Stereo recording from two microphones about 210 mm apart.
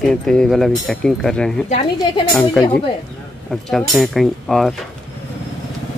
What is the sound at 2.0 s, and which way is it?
Speech, 15° left (ahead or behind).